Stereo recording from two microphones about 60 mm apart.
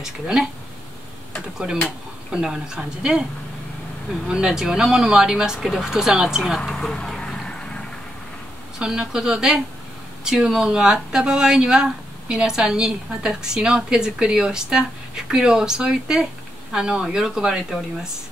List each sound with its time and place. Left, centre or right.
0.0 s speech: centre
2.3 s speech: centre
4.3 s speech: centre
5.6 s speech: centre
5.9 s speech: centre
6.6 s vehicle: centre
8.7 s speech: centre